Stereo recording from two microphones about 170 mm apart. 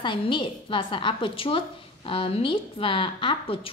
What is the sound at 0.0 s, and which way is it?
A woman's voice, 30° left (ahead or behind).